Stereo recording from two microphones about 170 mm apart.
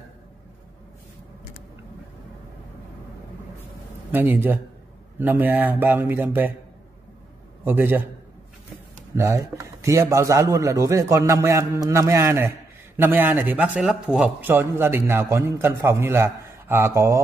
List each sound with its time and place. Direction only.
4.1 s a man's voice: 10° right (ahead or behind)
7.6 s a man's voice: 10° right (ahead or behind)
9.1 s a man's voice: 15° right (ahead or behind)